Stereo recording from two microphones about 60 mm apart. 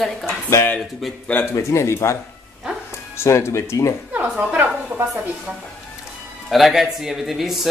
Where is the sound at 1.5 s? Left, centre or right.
Left.